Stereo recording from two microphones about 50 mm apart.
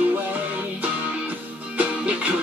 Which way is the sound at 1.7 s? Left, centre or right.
Right.